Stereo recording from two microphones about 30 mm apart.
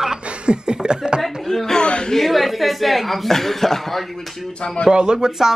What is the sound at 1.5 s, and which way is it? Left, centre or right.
Speech, left.